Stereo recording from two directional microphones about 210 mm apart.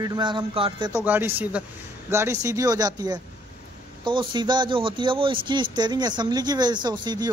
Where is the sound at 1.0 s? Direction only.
10° right (ahead or behind).